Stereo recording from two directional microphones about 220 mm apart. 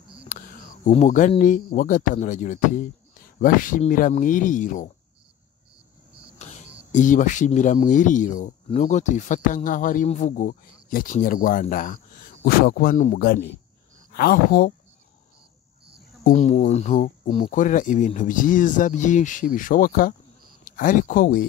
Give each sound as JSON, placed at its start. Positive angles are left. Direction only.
{"t": 0.3, "sound": "speech", "side_deg": 35}
{"t": 6.3, "sound": "cricket", "side_deg": 30}
{"t": 6.9, "sound": "speech", "side_deg": 35}
{"t": 16.3, "sound": "speech", "side_deg": 35}